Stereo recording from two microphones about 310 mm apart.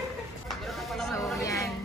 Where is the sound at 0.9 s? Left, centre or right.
Centre.